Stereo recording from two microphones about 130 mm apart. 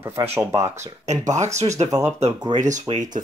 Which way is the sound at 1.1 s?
65° right (ahead or behind).